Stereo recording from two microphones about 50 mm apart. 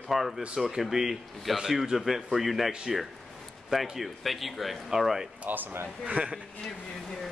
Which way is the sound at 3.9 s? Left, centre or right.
Centre.